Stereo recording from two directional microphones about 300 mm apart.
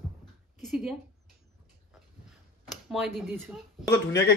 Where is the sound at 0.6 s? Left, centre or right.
Centre.